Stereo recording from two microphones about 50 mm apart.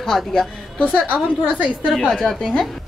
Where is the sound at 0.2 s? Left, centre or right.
Centre.